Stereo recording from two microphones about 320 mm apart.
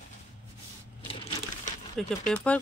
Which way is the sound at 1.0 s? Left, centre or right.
Centre.